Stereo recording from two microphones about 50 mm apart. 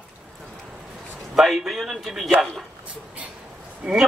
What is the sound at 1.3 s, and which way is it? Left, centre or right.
Speech, centre.